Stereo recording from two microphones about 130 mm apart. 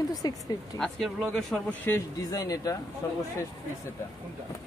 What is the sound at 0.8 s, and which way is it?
Speech, centre (ahead or behind).